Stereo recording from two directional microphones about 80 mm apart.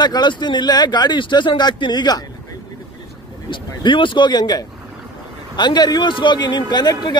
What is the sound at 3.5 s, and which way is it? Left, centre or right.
A man's voice, left.